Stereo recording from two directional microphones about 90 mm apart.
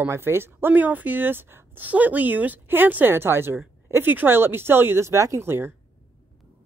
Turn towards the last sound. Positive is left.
turn(degrees=-25)  # may be behind; listen again after turning